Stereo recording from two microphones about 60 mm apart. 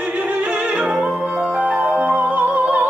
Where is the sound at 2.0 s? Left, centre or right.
Right.